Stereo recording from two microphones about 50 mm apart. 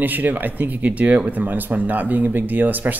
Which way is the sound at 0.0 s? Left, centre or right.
Right.